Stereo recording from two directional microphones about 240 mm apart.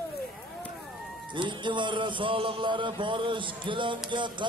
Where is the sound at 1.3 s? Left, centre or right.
Centre.